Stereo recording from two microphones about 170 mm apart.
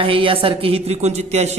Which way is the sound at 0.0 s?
30° right (ahead or behind).